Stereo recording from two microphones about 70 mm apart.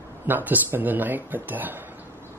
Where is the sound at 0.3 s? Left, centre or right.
Right.